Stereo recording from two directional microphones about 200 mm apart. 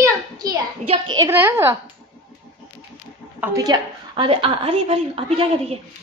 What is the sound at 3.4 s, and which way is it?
A woman's voice, 15° right (ahead or behind).